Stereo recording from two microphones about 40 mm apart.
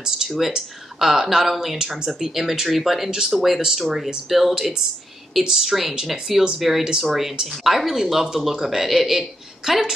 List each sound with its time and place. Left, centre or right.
0.4 s speech: centre